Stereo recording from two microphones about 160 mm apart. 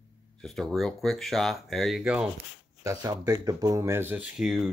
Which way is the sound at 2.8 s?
20° right (ahead or behind).